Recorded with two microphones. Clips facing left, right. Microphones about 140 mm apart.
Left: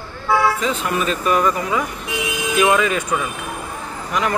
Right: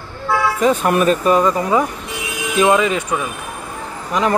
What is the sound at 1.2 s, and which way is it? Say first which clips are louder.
Speech: right 3 dB; 30° right (ahead or behind).